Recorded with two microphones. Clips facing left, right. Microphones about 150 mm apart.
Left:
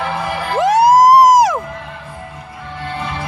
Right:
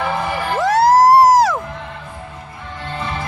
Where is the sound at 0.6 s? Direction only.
20° left (ahead or behind).